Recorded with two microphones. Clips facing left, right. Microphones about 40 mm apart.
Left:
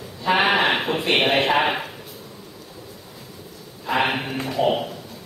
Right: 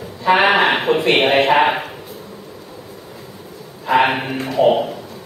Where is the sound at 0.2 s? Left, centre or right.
Right.